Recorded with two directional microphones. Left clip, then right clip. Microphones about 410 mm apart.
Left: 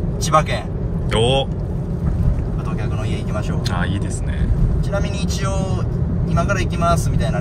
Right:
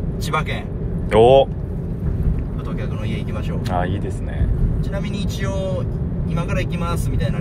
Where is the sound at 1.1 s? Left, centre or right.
Centre.